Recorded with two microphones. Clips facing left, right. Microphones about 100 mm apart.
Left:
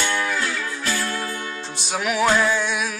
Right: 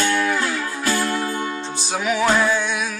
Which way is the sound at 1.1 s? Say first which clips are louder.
Right 5 dB; 20° right (ahead or behind).